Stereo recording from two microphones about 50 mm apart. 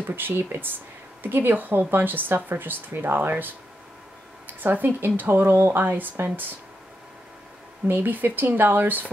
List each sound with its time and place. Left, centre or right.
0.1 s speech: right
7.9 s speech: right